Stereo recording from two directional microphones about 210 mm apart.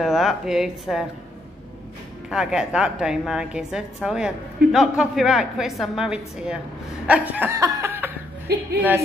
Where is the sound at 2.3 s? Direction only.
5° right (ahead or behind).